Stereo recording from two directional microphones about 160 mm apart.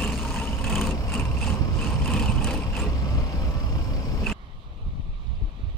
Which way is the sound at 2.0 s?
5° left (ahead or behind).